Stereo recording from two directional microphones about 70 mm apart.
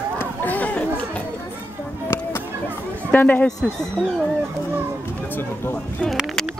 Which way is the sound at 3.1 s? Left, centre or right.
Left.